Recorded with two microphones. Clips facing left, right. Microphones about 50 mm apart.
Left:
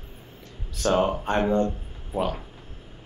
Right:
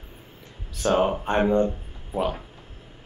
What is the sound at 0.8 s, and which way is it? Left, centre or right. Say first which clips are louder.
Speech: right 1 dB; centre.